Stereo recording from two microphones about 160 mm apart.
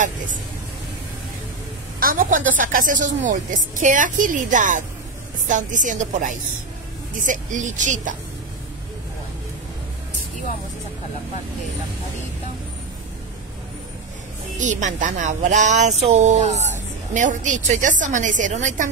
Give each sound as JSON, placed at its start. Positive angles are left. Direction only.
{"t": 2.0, "sound": "a woman's voice", "side_deg": -60}
{"t": 14.6, "sound": "a woman's voice", "side_deg": -50}
{"t": 16.5, "sound": "a sound", "side_deg": 45}
{"t": 17.1, "sound": "a woman's voice", "side_deg": -50}